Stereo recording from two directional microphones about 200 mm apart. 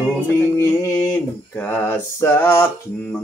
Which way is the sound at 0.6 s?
15° left (ahead or behind).